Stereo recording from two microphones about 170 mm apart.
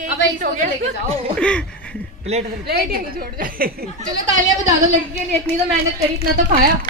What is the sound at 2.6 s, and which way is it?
A woman's voice, 65° right (ahead or behind).